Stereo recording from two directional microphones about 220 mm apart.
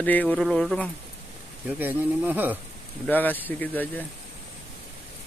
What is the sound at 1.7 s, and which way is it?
Speech, 10° right (ahead or behind).